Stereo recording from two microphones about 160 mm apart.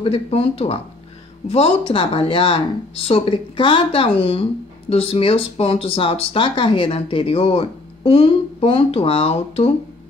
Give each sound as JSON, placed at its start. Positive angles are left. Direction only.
{"t": 0.0, "sound": "speech", "side_deg": 35}